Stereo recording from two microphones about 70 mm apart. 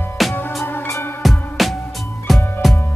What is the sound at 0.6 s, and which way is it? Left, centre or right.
Music, left.